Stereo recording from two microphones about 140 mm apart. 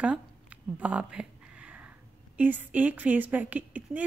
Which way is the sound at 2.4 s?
10° right (ahead or behind).